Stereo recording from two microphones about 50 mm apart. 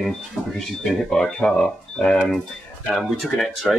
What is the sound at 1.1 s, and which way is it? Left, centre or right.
Speech, centre.